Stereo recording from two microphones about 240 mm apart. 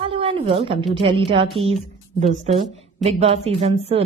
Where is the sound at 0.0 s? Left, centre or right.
Right.